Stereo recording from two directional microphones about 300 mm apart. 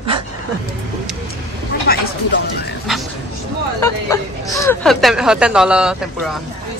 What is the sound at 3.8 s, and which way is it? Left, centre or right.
Speech, centre.